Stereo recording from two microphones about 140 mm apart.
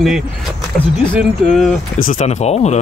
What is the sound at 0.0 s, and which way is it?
Speech, centre (ahead or behind).